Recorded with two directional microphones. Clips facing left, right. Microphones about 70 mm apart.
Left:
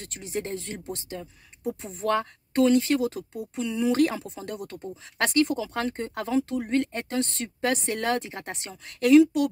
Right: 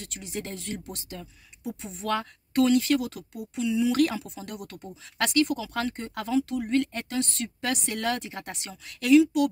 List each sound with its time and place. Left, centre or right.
0.0 s speech: left
3.6 s speech: left
3.9 s speech: left